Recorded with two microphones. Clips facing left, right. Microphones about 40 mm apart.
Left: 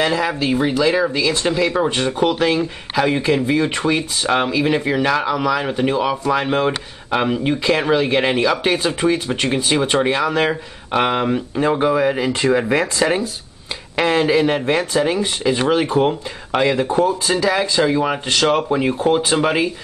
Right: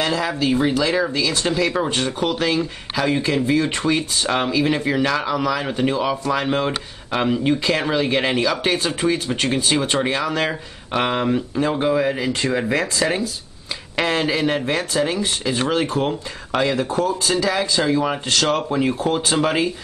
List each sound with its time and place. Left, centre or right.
0.0 s speech: centre
11.5 s speech: left
13.9 s speech: centre